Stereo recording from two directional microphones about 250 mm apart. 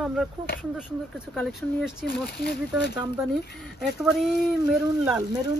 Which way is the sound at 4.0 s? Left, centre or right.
Centre.